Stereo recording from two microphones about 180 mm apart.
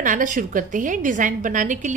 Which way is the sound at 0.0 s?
45° right (ahead or behind).